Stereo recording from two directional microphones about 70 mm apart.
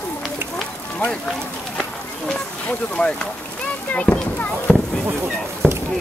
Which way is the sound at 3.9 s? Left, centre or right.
Centre.